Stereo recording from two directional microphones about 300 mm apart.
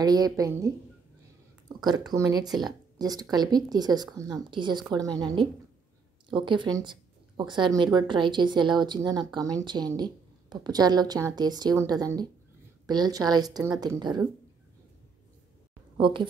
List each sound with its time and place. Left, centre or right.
0.0 s a woman's voice: centre
1.8 s a woman's voice: centre
16.0 s a woman's voice: centre